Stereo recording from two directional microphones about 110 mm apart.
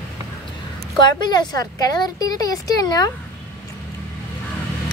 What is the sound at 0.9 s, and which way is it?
A woman's voice, 40° left (ahead or behind).